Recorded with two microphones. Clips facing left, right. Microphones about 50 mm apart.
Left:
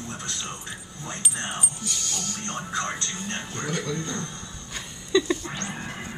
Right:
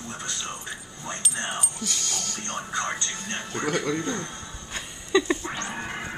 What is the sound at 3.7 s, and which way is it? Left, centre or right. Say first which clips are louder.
Speech: right 4 dB; right.